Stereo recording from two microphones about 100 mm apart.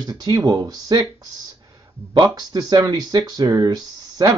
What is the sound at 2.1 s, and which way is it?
Speech, 40° right (ahead or behind).